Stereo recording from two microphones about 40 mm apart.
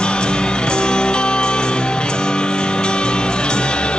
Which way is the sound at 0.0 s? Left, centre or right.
Left.